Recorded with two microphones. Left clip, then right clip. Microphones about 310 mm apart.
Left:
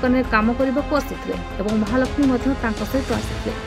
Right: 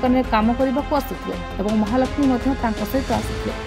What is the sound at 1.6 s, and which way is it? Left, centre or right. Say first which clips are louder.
Speech: right 1 dB; centre.